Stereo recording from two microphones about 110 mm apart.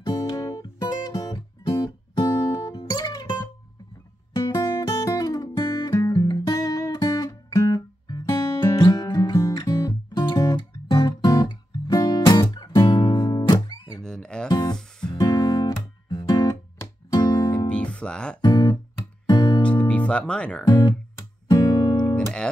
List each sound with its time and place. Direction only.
0.0 s music: 35° left (ahead or behind)
4.6 s music: 30° left (ahead or behind)
13.9 s music: 5° left (ahead or behind)
14.5 s music: 35° left (ahead or behind)
15.0 s guitar: 35° left (ahead or behind)
16.7 s music: 25° left (ahead or behind)
17.2 s music: 40° left (ahead or behind)
17.6 s music: 10° left (ahead or behind)
18.4 s guitar: 40° left (ahead or behind)
19.2 s music: 40° left (ahead or behind)
19.9 s music: 10° left (ahead or behind)
20.6 s music: 40° left (ahead or behind)